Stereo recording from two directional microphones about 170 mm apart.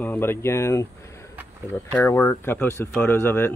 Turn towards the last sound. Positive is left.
turn(degrees=15)  # may be behind; listen again after turning